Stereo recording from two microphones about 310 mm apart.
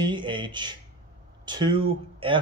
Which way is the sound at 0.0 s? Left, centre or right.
Centre.